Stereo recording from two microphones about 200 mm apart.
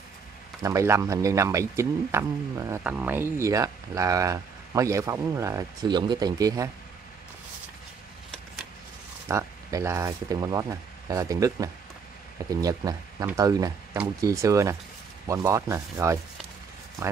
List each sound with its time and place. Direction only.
0.6 s speech: 15° right (ahead or behind)
9.3 s speech: 15° right (ahead or behind)